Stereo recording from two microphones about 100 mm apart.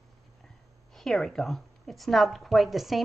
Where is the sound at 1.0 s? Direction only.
5° left (ahead or behind).